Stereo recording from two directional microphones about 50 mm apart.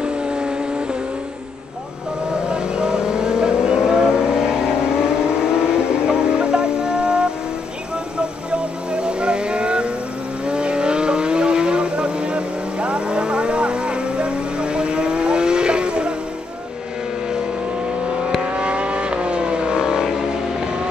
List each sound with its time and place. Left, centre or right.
0.0 s vehicle: centre
2.4 s vehicle: centre
18.6 s vehicle: right